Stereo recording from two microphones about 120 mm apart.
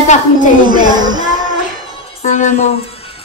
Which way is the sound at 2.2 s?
80° left.